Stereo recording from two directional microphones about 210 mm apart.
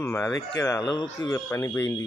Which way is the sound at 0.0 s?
10° left (ahead or behind).